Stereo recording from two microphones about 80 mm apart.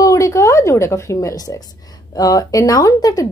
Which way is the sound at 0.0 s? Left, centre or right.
Left.